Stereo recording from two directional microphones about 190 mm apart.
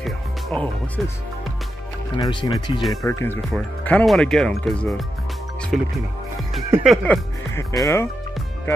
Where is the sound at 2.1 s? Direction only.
25° left (ahead or behind).